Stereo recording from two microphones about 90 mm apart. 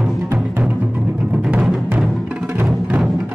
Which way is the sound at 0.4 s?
15° right (ahead or behind).